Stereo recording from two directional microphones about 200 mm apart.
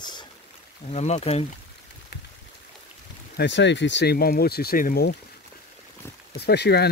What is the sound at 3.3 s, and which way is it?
Speech, 60° left (ahead or behind).